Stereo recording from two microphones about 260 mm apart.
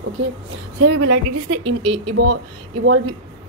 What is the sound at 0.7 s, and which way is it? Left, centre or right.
Speech, right.